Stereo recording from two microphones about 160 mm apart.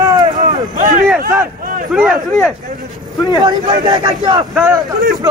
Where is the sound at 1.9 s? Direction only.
5° right (ahead or behind).